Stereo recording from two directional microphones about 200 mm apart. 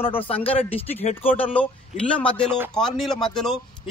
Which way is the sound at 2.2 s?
5° left (ahead or behind).